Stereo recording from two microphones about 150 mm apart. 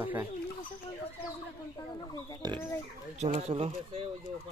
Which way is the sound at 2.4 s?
25° right (ahead or behind).